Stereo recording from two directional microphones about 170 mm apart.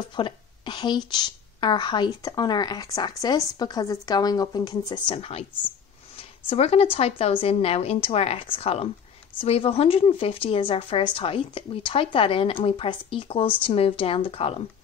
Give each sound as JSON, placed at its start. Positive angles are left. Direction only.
{"t": 0.1, "sound": "a woman's voice", "side_deg": 30}